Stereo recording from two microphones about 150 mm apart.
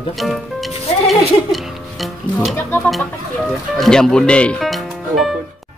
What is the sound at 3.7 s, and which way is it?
Speech, centre (ahead or behind).